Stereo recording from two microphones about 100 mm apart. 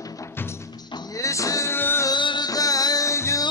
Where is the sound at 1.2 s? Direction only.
30° left (ahead or behind).